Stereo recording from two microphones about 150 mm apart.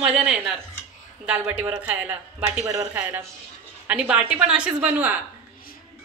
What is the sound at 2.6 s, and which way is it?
Speech, 20° right (ahead or behind).